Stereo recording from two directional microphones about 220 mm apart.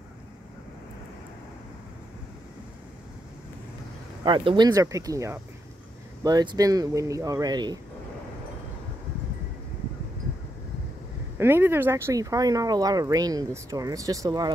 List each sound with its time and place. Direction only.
4.2 s speech: 20° right (ahead or behind)
11.3 s speech: 10° right (ahead or behind)